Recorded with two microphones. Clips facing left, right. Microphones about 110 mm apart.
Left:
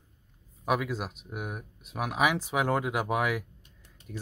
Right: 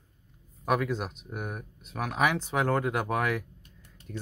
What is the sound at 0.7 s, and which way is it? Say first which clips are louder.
Speech: right 1 dB; 5° left (ahead or behind).